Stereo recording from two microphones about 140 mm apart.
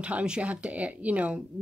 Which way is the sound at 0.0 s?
5° right (ahead or behind).